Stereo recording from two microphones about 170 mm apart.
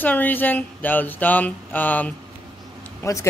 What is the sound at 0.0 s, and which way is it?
Speech, 10° left (ahead or behind).